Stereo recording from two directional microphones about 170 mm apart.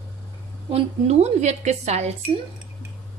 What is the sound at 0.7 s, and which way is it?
A woman's voice, 40° right (ahead or behind).